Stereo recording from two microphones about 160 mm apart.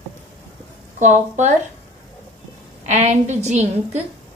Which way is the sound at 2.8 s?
50° right (ahead or behind).